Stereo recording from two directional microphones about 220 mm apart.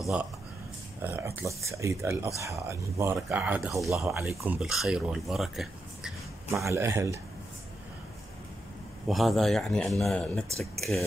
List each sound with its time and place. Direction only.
0.0 s speech: 5° right (ahead or behind)
6.7 s speech: 15° right (ahead or behind)
9.0 s speech: centre (ahead or behind)